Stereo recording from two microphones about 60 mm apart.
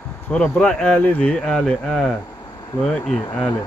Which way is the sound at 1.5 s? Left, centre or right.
Centre.